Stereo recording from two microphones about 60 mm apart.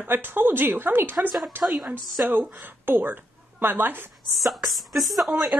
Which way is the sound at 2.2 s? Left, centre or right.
Right.